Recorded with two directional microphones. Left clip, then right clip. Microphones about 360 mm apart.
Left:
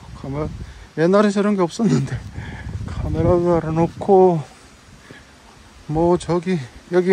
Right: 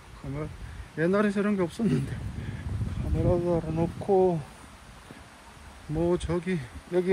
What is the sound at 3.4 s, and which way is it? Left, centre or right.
Speech, left.